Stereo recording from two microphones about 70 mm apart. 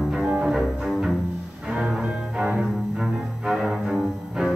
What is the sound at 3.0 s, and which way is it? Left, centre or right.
Cello, centre.